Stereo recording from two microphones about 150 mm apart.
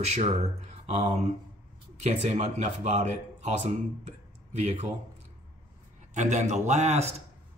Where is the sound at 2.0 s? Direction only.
50° right (ahead or behind).